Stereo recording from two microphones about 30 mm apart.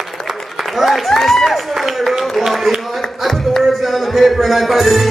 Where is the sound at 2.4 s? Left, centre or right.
Centre.